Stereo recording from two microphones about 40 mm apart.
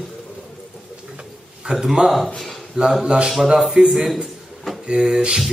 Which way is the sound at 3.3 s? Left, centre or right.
Centre.